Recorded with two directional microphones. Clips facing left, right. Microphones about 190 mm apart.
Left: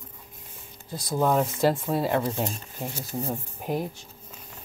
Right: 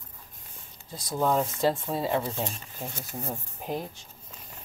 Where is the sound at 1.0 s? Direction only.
5° left (ahead or behind).